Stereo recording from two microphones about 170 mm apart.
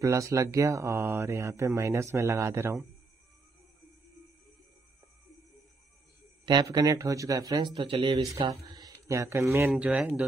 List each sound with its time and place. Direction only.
0.0 s speech: 20° right (ahead or behind)
6.4 s speech: 25° right (ahead or behind); by 10.2 s 10° right (ahead or behind)